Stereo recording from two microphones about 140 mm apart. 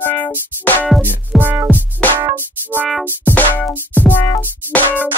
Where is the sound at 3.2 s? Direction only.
10° left (ahead or behind).